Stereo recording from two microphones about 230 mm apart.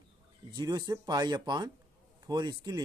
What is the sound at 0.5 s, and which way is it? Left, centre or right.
Speech, centre.